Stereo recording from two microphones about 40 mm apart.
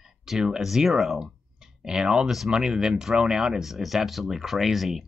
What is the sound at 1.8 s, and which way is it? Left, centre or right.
Speech, centre.